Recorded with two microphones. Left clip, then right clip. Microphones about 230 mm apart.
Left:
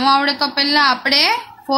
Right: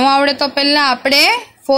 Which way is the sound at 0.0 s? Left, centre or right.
Right.